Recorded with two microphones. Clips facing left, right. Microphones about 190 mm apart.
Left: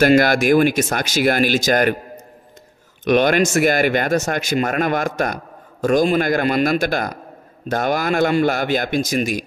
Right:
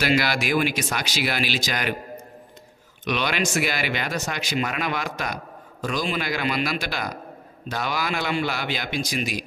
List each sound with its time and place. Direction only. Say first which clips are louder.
0.0 s speech: left 9 dB; 50° left (ahead or behind)
3.1 s speech: left 10 dB; 50° left (ahead or behind)